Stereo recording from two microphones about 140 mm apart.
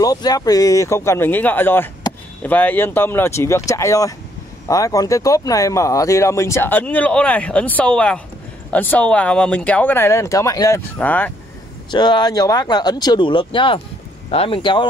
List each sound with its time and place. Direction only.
0.0 s speech: 30° left (ahead or behind)
11.0 s speech: 10° left (ahead or behind)
11.9 s speech: 30° left (ahead or behind)